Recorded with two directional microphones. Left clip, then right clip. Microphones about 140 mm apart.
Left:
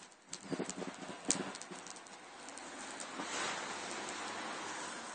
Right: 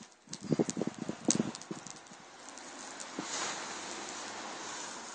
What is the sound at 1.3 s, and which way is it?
Clip-clop, 20° left (ahead or behind).